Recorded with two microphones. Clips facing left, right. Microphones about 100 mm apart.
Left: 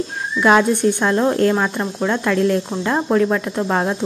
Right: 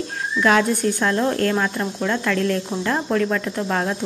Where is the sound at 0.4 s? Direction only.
20° left (ahead or behind).